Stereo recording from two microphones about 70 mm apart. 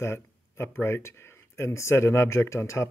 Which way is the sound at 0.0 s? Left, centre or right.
Left.